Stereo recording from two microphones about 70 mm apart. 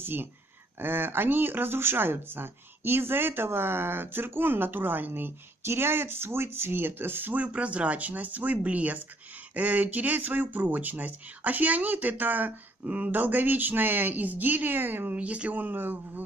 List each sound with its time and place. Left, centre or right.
0.0 s speech: right